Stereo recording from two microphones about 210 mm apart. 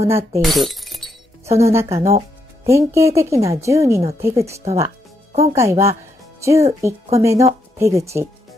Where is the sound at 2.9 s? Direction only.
15° right (ahead or behind).